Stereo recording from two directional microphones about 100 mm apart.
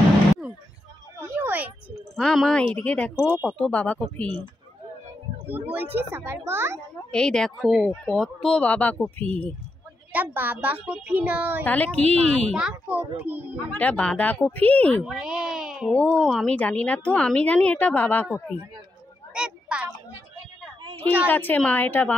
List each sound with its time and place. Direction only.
1.2 s a sound: 20° right (ahead or behind)
2.1 s a woman's voice: 5° left (ahead or behind)
5.5 s speech: 20° right (ahead or behind)
7.1 s a woman's voice: 10° left (ahead or behind)
10.1 s a child's voice: 20° right (ahead or behind)
11.6 s a woman's voice: 15° left (ahead or behind)
12.5 s a child's voice: 10° right (ahead or behind)
13.7 s a woman's voice: 15° left (ahead or behind)
15.0 s speech: 5° right (ahead or behind)
15.9 s a woman's voice: 10° left (ahead or behind)
19.3 s a child's voice: 10° right (ahead or behind)
21.3 s a woman's voice: 20° left (ahead or behind)